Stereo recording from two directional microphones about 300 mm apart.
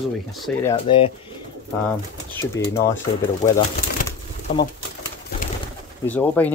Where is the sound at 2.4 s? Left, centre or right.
Centre.